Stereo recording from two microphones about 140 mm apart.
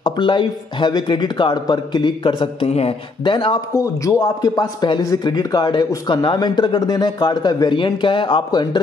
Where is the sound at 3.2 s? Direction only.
35° left (ahead or behind).